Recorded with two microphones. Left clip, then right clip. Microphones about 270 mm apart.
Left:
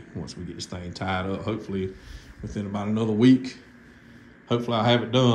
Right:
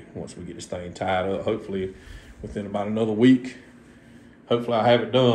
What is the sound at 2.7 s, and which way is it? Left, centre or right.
A man's voice, centre.